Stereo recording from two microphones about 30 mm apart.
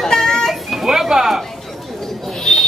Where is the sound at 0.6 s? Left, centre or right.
Centre.